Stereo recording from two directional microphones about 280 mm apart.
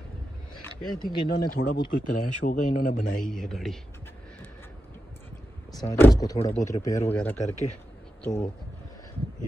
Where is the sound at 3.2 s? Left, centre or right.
Centre.